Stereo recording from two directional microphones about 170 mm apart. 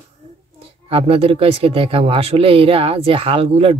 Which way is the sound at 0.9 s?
35° right (ahead or behind).